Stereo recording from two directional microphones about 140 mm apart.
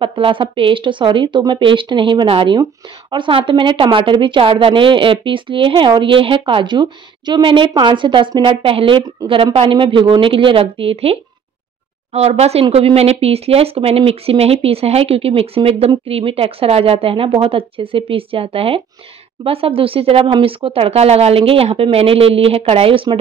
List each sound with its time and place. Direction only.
0.0 s a woman's voice: 40° right (ahead or behind)